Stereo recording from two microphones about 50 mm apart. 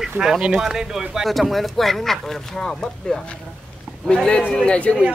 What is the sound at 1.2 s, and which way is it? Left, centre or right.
Speech, centre.